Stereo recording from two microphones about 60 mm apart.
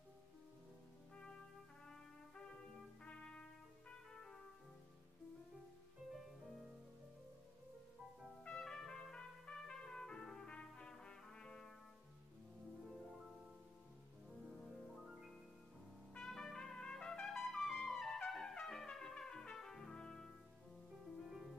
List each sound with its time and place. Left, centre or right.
1.1 s brass instrument: centre
3.0 s brass instrument: centre
4.1 s music: centre
6.1 s music: centre
8.5 s trumpet: centre
10.5 s brass instrument: centre
15.0 s music: centre
16.2 s trumpet: centre
21.2 s music: centre